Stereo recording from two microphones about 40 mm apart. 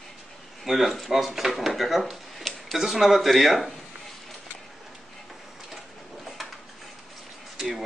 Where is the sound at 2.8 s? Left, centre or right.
Centre.